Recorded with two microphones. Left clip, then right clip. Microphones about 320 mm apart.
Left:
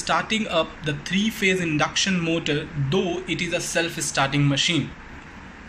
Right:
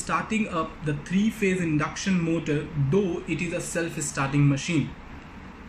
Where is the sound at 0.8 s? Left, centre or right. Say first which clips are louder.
Left 3 dB; centre.